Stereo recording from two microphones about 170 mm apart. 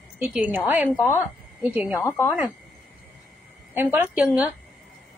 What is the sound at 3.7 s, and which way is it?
Speech, 15° right (ahead or behind).